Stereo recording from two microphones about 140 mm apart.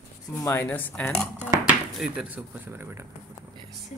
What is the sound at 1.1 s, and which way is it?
Speech, centre (ahead or behind).